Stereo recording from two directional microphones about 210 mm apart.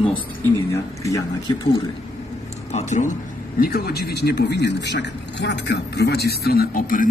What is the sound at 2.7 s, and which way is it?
Speech, 35° left (ahead or behind).